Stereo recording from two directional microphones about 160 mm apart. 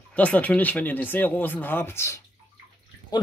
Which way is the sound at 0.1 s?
10° left (ahead or behind).